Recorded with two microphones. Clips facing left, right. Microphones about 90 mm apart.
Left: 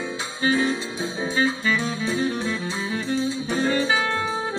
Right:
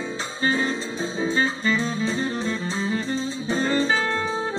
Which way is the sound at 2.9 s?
35° right (ahead or behind).